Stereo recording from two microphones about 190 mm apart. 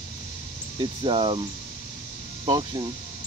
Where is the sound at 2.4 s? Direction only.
25° right (ahead or behind).